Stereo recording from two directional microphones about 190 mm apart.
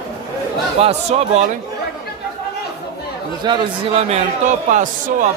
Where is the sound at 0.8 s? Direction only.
30° right (ahead or behind).